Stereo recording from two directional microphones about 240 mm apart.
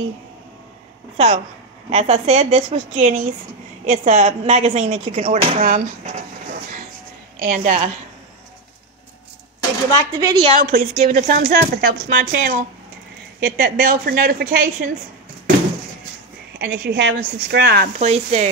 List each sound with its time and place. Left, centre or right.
1.1 s a woman's voice: right
7.3 s speech: right
10.2 s a woman's voice: right
16.5 s a woman's voice: right
17.9 s a woman's voice: right